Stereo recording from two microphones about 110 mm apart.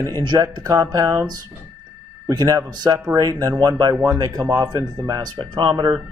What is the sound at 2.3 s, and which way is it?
Speech, 35° right (ahead or behind).